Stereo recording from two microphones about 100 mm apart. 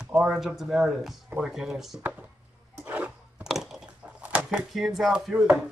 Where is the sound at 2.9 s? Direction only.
15° right (ahead or behind).